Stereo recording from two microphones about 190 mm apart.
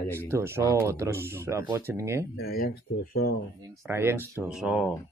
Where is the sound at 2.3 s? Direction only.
50° left (ahead or behind).